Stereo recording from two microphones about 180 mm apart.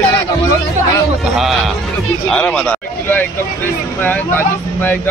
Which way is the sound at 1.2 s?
Centre (ahead or behind).